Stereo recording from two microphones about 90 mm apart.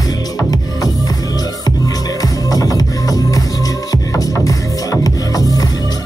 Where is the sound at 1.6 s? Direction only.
45° left (ahead or behind).